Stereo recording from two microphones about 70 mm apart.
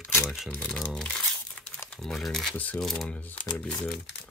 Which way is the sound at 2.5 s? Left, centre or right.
Left.